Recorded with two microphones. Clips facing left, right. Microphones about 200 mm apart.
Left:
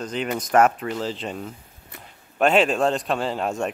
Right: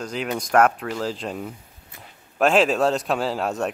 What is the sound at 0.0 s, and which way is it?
Speech, centre (ahead or behind).